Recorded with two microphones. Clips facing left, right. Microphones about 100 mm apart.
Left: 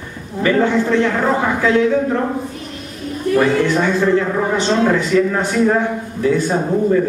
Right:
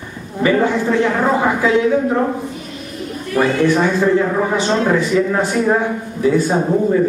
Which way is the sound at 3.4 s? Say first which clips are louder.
Right 1 dB; 15° right (ahead or behind).